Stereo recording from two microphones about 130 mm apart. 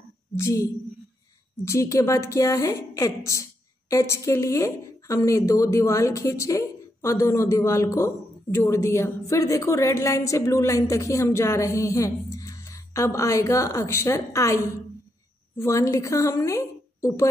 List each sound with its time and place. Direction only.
0.4 s a woman's voice: 25° left (ahead or behind)